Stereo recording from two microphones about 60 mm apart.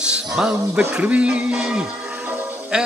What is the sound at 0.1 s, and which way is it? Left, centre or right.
Music, centre.